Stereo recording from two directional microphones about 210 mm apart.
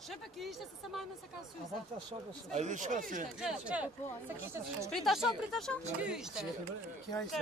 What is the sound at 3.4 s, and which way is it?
Speech, 5° right (ahead or behind).